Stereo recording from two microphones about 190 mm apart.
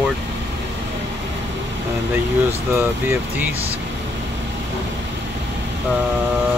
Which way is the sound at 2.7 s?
10° right (ahead or behind).